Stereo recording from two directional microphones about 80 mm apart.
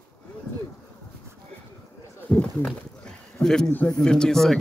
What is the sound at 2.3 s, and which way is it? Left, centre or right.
Speech, centre.